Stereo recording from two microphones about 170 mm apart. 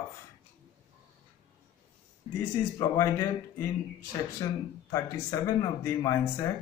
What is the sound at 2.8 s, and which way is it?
Speech, 20° left (ahead or behind).